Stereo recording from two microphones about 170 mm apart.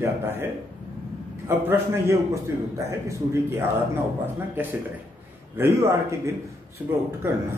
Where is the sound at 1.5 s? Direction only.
15° right (ahead or behind).